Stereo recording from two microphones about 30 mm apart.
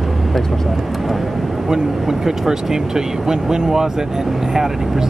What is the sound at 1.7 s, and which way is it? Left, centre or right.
Speech, centre.